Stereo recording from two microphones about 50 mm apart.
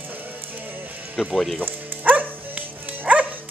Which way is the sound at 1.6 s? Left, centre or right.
Right.